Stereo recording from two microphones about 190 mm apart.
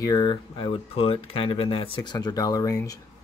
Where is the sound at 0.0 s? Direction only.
20° left (ahead or behind).